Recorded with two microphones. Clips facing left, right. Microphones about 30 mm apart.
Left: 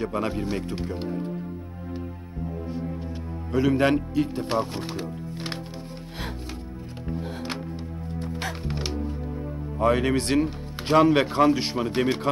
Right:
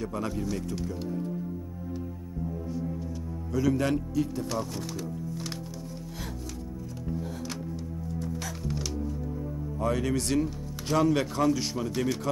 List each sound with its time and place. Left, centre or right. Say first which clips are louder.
0.0 s speech: left 5 dB; left
2.7 s music: left 2 dB; left
3.5 s speech: left 5 dB; left
7.1 s music: left 4 dB; left
9.8 s speech: left 7 dB; left